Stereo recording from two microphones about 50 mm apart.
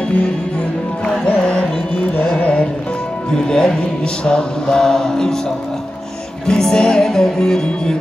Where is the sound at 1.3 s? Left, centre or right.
Left.